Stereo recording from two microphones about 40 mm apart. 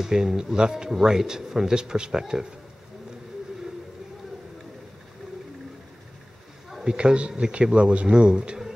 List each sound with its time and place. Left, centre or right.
0.0 s speech: centre
6.7 s a man's voice: centre